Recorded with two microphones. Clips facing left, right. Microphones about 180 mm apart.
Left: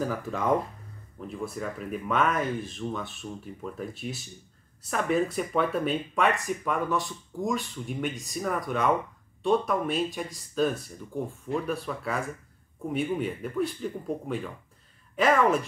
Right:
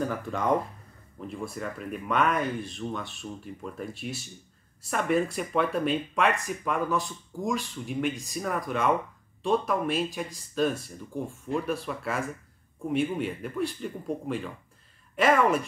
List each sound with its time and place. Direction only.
0.0 s speech: centre (ahead or behind)